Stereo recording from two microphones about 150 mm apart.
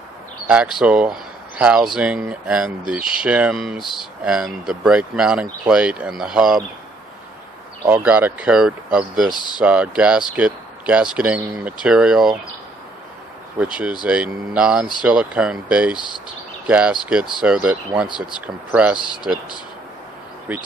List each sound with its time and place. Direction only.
0.5 s speech: 5° right (ahead or behind)
7.8 s speech: 10° right (ahead or behind)
9.3 s speech: 30° left (ahead or behind)
9.6 s speech: 5° right (ahead or behind)
13.6 s speech: 10° right (ahead or behind)